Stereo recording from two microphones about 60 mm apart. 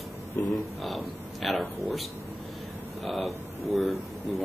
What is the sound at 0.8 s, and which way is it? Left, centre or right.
A man's voice, centre.